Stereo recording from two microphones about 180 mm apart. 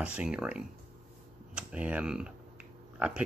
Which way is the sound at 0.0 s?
5° right (ahead or behind).